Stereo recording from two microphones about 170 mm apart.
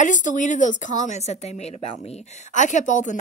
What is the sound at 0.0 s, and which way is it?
A woman's voice, 45° left (ahead or behind).